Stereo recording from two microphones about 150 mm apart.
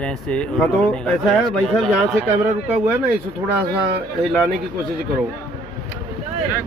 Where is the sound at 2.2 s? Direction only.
20° right (ahead or behind).